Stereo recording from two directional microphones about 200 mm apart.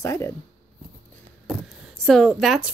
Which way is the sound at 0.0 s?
15° left (ahead or behind).